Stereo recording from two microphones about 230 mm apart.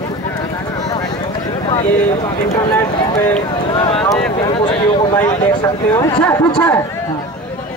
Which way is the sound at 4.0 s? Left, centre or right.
Centre.